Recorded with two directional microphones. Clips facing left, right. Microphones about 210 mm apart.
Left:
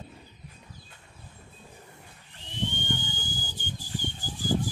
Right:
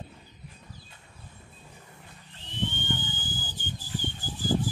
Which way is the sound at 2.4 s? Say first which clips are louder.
Even; 15° left (ahead or behind).